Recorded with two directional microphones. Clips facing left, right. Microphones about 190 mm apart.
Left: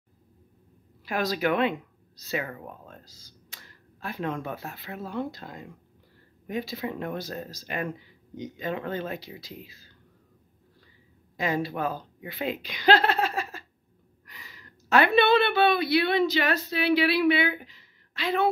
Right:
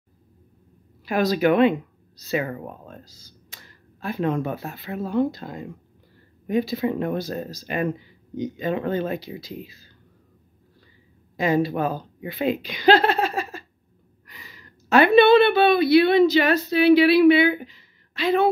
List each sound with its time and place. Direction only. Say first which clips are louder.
1.2 s speech: right 8 dB; 20° right (ahead or behind)
6.7 s speech: right 8 dB; 30° right (ahead or behind)
11.3 s a woman's voice: right 7 dB; 20° right (ahead or behind)